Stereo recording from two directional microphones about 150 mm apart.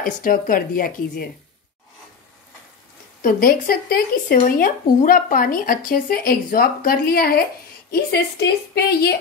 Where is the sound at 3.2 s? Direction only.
70° left (ahead or behind).